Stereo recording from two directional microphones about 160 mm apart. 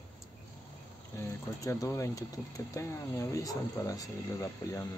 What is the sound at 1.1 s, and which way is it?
Speech, 20° left (ahead or behind).